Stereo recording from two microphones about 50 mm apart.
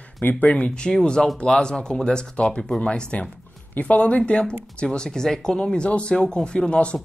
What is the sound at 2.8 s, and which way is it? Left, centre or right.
Speech, left.